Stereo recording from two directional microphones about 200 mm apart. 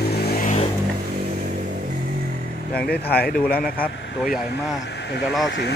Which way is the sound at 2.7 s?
50° left (ahead or behind).